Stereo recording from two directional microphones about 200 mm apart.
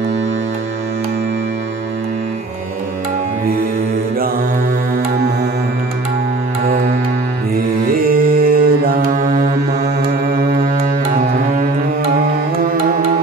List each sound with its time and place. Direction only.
8.1 s mantra: 45° right (ahead or behind)